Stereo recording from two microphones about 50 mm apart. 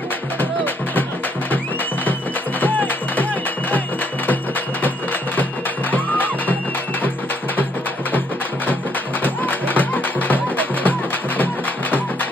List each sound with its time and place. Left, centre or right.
2.6 s music: left
4.8 s music: left
9.2 s music: left